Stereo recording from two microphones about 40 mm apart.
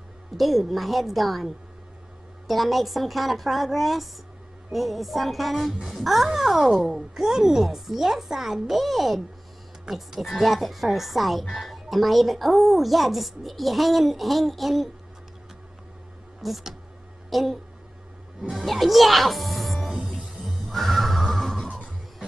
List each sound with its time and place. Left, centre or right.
0.4 s speech: centre
16.3 s a woman's voice: centre
18.6 s speech: centre
20.4 s music: centre
21.6 s music: left